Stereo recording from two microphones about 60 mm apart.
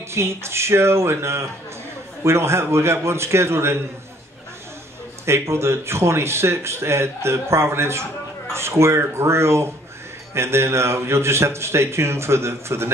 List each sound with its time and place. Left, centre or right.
0.1 s a man's voice: right
5.2 s a man's voice: right